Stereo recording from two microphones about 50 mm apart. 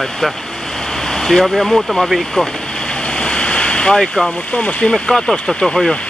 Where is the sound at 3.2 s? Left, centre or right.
Centre.